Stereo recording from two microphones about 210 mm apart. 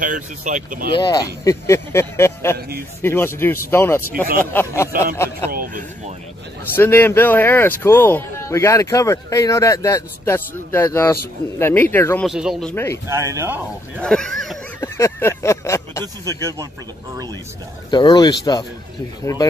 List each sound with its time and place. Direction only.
0.0 s speech: 40° right (ahead or behind)
0.9 s a man's voice: 20° left (ahead or behind)
5.5 s speech: 40° right (ahead or behind)
6.7 s a man's voice: 10° left (ahead or behind)
12.3 s speech: centre (ahead or behind)
13.1 s speech: 15° right (ahead or behind)
13.9 s speech: 5° left (ahead or behind)
14.8 s a sound: 10° left (ahead or behind)
17.9 s speech: 20° left (ahead or behind)